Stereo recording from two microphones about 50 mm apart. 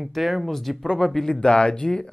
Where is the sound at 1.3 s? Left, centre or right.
Centre.